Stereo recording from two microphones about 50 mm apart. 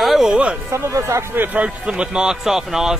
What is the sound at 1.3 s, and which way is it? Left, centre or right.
Speech, right.